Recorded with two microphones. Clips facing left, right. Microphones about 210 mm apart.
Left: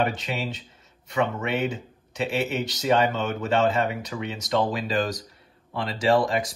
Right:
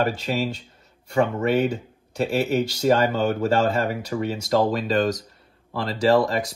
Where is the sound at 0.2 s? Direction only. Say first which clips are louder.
Right 5 dB; centre (ahead or behind).